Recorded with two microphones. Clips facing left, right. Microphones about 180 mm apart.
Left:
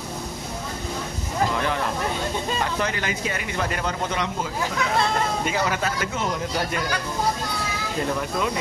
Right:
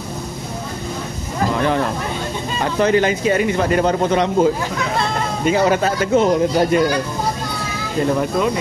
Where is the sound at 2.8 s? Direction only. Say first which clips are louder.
Right 11 dB; 30° right (ahead or behind).